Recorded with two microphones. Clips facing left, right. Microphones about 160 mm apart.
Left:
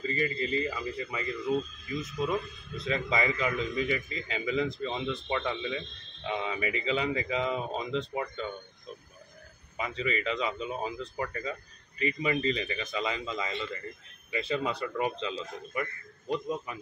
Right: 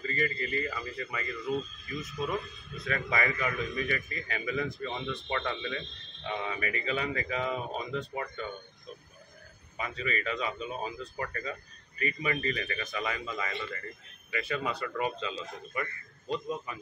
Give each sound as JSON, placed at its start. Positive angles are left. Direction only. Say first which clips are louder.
{"t": 0.0, "sound": "a man's voice", "louder": "left 2 dB", "side_deg": 15}
{"t": 9.8, "sound": "a man's voice", "louder": "left 3 dB", "side_deg": 20}